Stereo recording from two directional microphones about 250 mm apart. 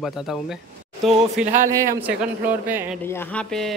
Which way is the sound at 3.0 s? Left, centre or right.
Centre.